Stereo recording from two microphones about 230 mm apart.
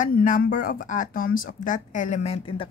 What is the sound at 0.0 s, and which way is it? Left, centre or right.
Speech, left.